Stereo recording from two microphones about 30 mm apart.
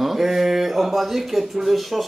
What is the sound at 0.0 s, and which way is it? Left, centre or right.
Mantra, centre.